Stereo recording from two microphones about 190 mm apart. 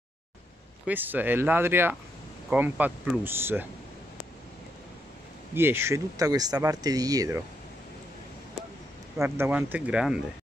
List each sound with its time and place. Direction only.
0.8 s speech: 10° right (ahead or behind)
5.5 s speech: 10° right (ahead or behind)
9.2 s speech: 10° right (ahead or behind)